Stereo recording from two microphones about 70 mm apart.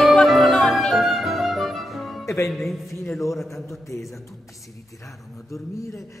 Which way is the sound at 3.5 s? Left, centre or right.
Left.